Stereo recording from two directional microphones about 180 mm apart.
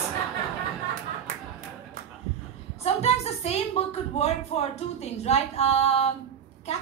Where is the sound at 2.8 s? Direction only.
35° left (ahead or behind).